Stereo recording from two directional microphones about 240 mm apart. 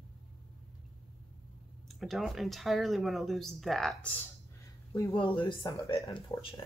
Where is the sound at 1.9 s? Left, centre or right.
Centre.